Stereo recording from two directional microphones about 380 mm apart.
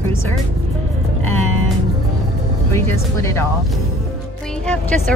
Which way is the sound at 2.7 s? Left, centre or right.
Centre.